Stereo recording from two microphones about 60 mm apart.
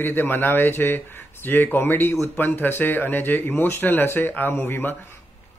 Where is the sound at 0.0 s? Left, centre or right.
Left.